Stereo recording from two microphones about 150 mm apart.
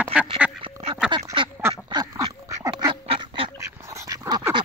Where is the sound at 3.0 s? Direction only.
35° right (ahead or behind).